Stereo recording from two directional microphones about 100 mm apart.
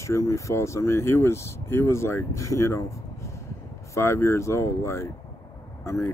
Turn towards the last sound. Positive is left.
turn(degrees=25)  # may be behind; listen again after turning